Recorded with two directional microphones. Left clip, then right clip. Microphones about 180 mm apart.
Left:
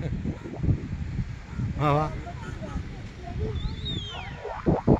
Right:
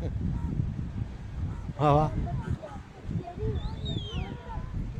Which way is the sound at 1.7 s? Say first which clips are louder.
Right 1 dB; 20° right (ahead or behind).